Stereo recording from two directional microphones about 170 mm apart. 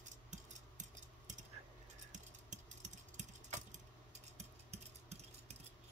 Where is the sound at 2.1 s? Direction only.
45° right (ahead or behind).